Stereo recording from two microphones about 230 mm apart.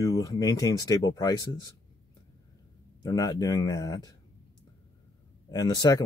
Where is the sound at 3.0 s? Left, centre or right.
Centre.